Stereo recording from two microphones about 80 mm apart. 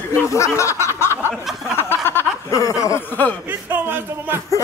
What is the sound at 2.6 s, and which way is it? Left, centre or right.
Speech, left.